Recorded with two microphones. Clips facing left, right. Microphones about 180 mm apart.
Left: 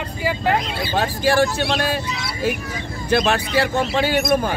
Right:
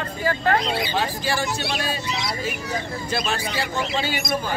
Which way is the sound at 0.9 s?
55° left (ahead or behind).